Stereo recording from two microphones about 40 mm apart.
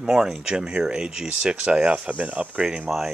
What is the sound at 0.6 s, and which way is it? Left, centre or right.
Speech, right.